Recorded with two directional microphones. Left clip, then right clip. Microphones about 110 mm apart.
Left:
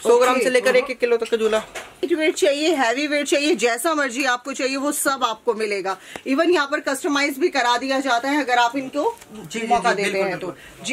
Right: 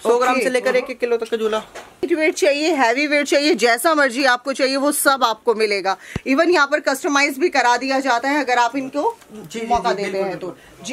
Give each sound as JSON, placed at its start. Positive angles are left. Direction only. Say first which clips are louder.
{"t": 0.0, "sound": "a man's voice", "louder": "even", "side_deg": -25}
{"t": 2.0, "sound": "speech", "louder": "right 2 dB", "side_deg": -35}
{"t": 9.5, "sound": "speech", "louder": "even", "side_deg": -10}